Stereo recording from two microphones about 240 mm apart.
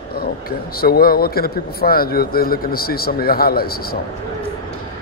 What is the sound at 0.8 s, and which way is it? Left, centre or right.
A man's voice, left.